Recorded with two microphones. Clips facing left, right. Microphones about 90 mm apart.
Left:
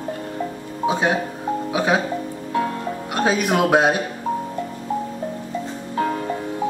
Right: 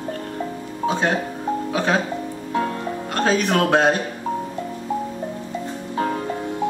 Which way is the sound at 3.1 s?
15° left (ahead or behind).